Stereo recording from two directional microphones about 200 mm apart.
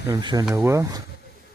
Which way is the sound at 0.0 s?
20° right (ahead or behind).